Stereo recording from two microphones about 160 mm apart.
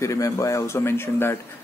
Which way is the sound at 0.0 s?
20° left (ahead or behind).